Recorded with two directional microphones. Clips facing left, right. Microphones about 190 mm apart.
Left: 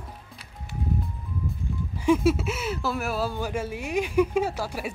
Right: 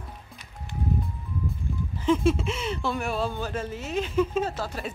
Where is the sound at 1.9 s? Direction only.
10° left (ahead or behind).